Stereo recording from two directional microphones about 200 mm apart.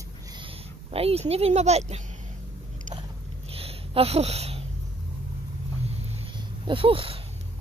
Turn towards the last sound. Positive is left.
turn(degrees=-25)  # may be behind; listen again after turning